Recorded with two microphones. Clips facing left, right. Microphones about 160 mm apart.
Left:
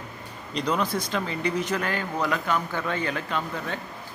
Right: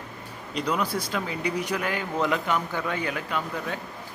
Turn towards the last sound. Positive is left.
turn(degrees=-10)  # may be behind; listen again after turning